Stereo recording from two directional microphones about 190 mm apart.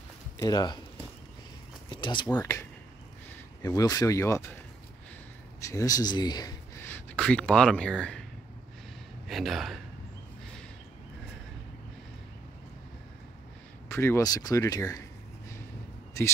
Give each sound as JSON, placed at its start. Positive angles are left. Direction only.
{"t": 0.4, "sound": "speech", "side_deg": 20}
{"t": 1.9, "sound": "a sound", "side_deg": 25}
{"t": 2.3, "sound": "speech", "side_deg": 20}
{"t": 3.6, "sound": "speech", "side_deg": 15}
{"t": 5.6, "sound": "speech", "side_deg": 15}
{"t": 9.3, "sound": "speech", "side_deg": 0}
{"t": 13.8, "sound": "speech", "side_deg": 15}